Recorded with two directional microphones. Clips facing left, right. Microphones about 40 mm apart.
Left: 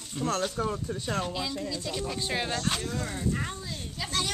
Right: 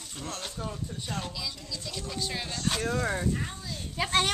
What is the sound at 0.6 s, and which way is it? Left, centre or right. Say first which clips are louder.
Speech: left 6 dB; left.